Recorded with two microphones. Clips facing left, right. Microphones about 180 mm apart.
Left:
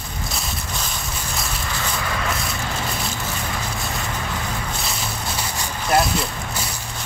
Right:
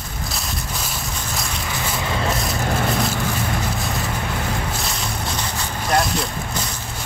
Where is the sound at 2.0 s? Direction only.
30° right (ahead or behind).